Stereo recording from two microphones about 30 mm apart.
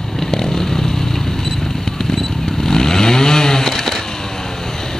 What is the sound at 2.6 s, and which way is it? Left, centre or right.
Chainsaw, centre.